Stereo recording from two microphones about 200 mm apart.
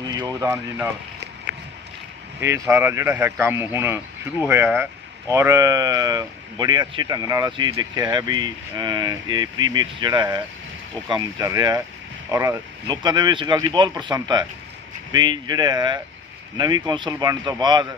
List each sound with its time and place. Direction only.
0.0 s speech: 20° right (ahead or behind)
2.4 s a man's voice: 15° right (ahead or behind)